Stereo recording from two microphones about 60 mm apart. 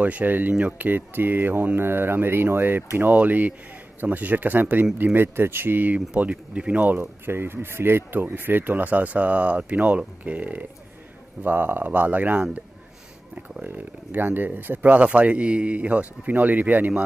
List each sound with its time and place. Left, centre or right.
0.0 s speech: right
5.9 s speech: right
6.9 s speech: right
13.7 s speech: right